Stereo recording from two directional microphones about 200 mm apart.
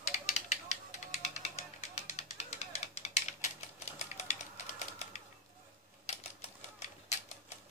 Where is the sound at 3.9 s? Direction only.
35° left (ahead or behind).